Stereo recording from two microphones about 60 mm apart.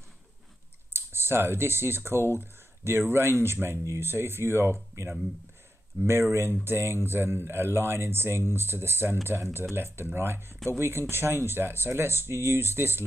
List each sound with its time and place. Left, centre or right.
0.9 s speech: right
6.0 s speech: right